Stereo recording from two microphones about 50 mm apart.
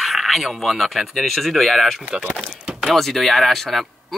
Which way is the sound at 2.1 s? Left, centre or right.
Centre.